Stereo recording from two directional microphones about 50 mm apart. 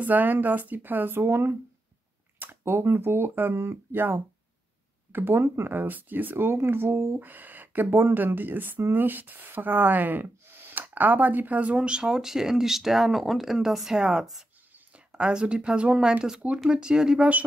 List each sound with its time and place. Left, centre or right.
0.0 s speech: right
7.2 s speech: right; by 17.2 s centre